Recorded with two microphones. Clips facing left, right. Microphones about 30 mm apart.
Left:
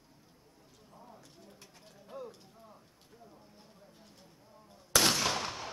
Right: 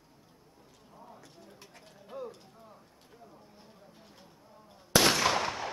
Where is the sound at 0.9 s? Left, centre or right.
Centre.